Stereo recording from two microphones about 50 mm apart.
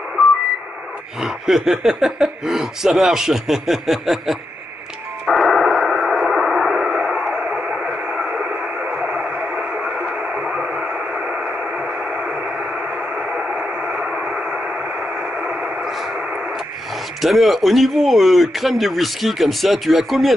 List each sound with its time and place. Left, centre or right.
1.2 s speech: centre
5.2 s radio: centre
9.0 s a sound: centre
13.3 s radio: centre
17.2 s speech: centre